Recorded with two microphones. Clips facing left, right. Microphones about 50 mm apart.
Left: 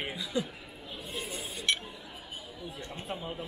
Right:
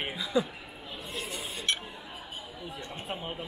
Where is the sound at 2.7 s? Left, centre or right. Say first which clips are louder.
Right 1 dB; right.